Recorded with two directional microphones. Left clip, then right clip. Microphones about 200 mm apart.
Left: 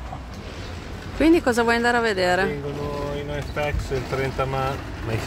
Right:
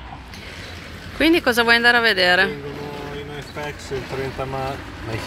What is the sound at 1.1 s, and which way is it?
Speech, 5° left (ahead or behind).